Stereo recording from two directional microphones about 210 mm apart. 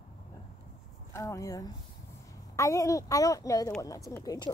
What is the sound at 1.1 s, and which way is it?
A woman's voice, 15° left (ahead or behind).